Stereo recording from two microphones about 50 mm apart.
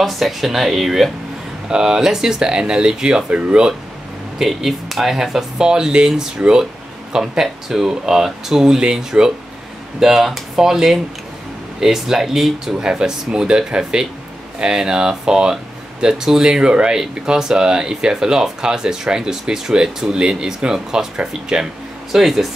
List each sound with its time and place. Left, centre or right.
0.0 s speech: centre
1.7 s speech: centre
4.4 s speech: centre
22.1 s speech: centre